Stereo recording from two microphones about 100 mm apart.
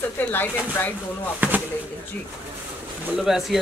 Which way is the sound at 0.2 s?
20° left (ahead or behind).